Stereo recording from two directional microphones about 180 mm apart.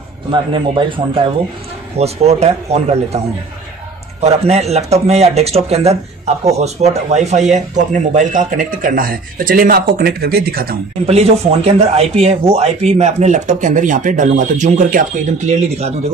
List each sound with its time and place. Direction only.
0.3 s a man's voice: 25° right (ahead or behind)
4.2 s speech: 35° right (ahead or behind); by 10.8 s 55° right (ahead or behind)
11.1 s speech: 35° right (ahead or behind)